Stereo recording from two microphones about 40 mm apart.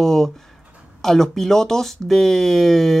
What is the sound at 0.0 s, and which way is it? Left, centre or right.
Speech, centre.